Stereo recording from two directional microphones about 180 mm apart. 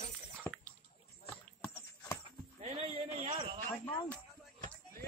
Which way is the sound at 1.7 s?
15° left (ahead or behind).